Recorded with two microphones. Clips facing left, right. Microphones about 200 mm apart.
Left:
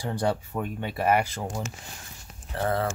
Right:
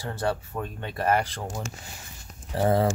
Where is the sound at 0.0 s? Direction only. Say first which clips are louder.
Left 2 dB; 15° left (ahead or behind).